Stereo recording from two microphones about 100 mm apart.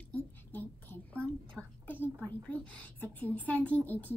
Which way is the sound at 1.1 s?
10° left (ahead or behind).